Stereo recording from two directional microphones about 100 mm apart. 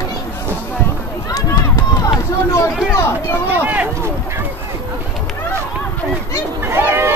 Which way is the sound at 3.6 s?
15° right (ahead or behind).